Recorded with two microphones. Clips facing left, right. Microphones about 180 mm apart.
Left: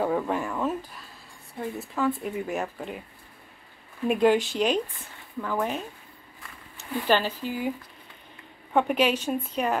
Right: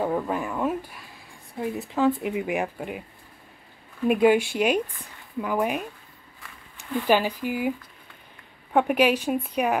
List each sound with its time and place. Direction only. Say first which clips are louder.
0.0 s speech: even; centre (ahead or behind)
4.1 s speech: right 2 dB; 10° right (ahead or behind)
7.1 s speech: right 2 dB; 10° right (ahead or behind)
8.7 s speech: right 2 dB; 10° right (ahead or behind)